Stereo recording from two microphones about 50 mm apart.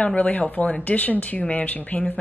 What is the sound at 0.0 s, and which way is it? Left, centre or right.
A woman's voice, left.